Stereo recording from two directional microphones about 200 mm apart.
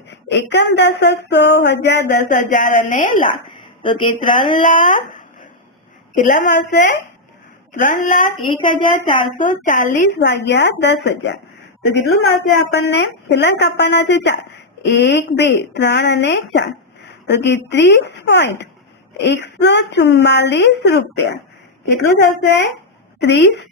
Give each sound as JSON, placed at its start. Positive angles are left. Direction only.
{"t": 0.3, "sound": "a woman's voice", "side_deg": 60}
{"t": 2.1, "sound": "speech", "side_deg": 40}
{"t": 3.8, "sound": "a woman's voice", "side_deg": 25}
{"t": 4.6, "sound": "speech", "side_deg": 40}
{"t": 8.6, "sound": "a woman's voice", "side_deg": 25}
{"t": 9.4, "sound": "speech", "side_deg": 40}
{"t": 10.1, "sound": "a woman's voice", "side_deg": 60}